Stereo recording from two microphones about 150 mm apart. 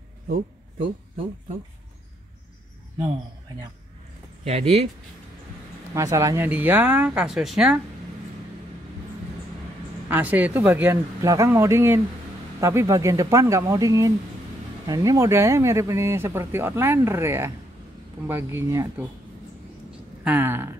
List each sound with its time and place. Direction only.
4.5 s speech: 45° right (ahead or behind)
5.9 s speech: 20° right (ahead or behind); by 7.8 s 5° right (ahead or behind)
10.0 s speech: 10° right (ahead or behind)
20.2 s speech: 15° right (ahead or behind)